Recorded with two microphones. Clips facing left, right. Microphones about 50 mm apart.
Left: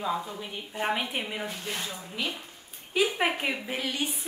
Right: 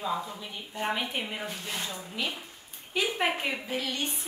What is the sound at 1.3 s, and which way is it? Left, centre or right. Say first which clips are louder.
A woman's voice: left 1 dB; centre.